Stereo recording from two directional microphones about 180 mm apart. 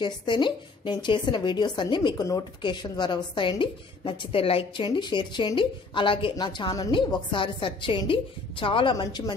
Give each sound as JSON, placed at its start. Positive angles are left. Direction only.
{"t": 0.0, "sound": "speech", "side_deg": 25}